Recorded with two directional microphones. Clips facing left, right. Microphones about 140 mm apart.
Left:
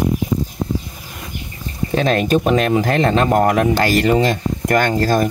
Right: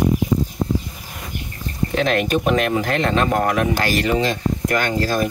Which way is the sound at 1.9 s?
35° left (ahead or behind).